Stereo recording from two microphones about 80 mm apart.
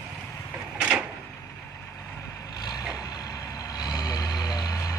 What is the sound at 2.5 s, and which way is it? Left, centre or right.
Vehicle, left.